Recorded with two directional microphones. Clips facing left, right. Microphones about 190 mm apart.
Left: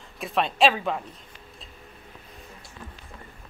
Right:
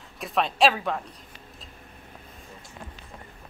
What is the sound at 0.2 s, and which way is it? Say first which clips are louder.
Speech: even; centre (ahead or behind).